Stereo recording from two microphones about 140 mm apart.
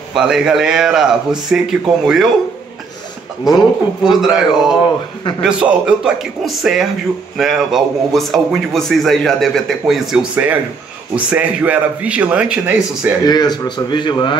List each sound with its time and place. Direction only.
0.1 s a man's voice: 5° right (ahead or behind)
4.0 s a man's voice: 5° right (ahead or behind)
13.2 s a man's voice: 30° left (ahead or behind)